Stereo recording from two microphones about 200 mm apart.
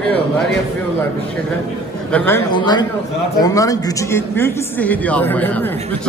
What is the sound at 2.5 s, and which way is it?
A man's voice, 20° left (ahead or behind).